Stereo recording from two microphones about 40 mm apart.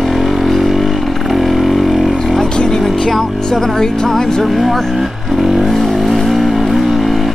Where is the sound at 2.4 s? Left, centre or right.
Centre.